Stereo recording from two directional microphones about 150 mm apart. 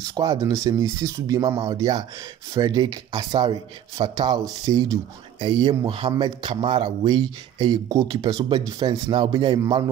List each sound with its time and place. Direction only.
0.1 s speech: 25° right (ahead or behind)